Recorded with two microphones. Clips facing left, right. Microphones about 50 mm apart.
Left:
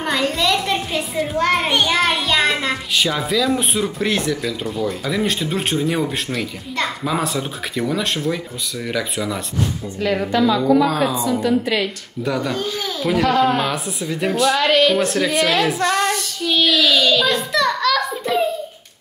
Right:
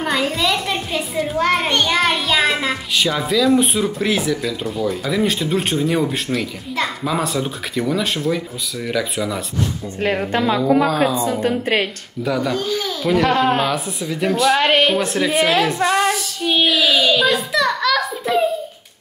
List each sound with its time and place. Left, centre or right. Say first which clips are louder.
0.0 s a child's voice: even; centre
10.0 s a woman's voice: left 1 dB; right
12.3 s a child's voice: right 2 dB; centre
13.2 s a woman's voice: left 1 dB; right
13.7 s a child's voice: right 1 dB; centre
14.6 s a woman's voice: even; right
15.0 s a woman's voice: right 1 dB; centre
16.4 s a sound: even; centre